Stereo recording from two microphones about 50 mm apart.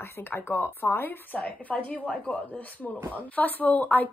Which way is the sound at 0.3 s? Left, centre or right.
Left.